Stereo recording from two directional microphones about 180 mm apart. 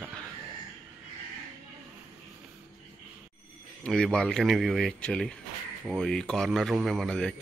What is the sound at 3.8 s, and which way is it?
Speech, 5° left (ahead or behind).